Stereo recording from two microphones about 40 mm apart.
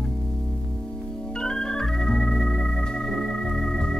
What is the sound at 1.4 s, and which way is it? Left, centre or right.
Organ, centre.